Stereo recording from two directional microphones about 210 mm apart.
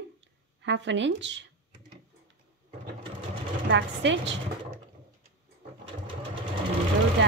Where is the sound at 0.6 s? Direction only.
60° right (ahead or behind).